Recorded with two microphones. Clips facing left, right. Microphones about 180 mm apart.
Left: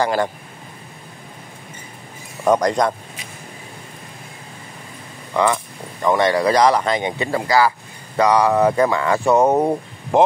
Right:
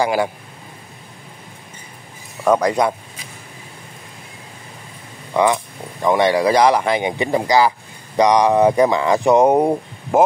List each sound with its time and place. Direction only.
0.0 s speech: 10° right (ahead or behind)
2.5 s speech: 5° right (ahead or behind)
5.3 s speech: 15° right (ahead or behind)